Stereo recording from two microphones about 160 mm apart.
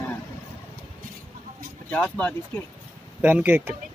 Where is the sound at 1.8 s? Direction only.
10° left (ahead or behind).